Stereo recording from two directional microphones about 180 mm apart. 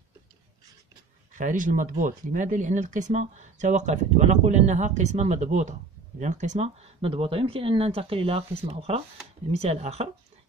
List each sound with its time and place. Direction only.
1.3 s speech: 45° right (ahead or behind)